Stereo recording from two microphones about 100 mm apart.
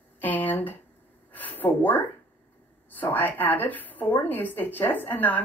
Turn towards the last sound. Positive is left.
turn(degrees=20)  # may be behind; listen again after turning